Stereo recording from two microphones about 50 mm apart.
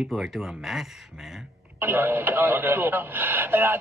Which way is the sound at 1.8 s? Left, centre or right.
Right.